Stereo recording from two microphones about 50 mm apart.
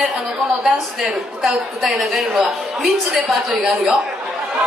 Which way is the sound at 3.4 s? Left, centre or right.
Centre.